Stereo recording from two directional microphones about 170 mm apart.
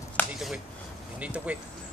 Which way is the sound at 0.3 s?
Centre (ahead or behind).